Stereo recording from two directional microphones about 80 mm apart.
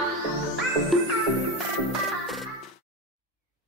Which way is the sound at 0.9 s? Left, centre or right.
Centre.